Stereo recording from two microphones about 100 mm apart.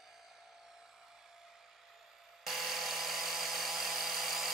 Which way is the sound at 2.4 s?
Centre (ahead or behind).